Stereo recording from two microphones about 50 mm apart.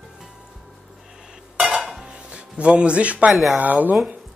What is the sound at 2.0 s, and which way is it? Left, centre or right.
Music, centre.